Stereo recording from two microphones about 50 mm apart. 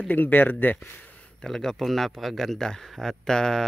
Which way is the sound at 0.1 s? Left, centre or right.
Left.